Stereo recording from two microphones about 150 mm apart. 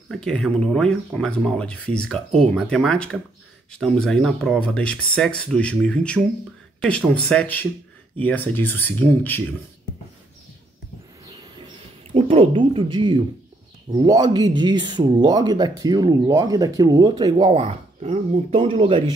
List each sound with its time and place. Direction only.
0.1 s speech: 5° left (ahead or behind)
12.1 s speech: 40° right (ahead or behind)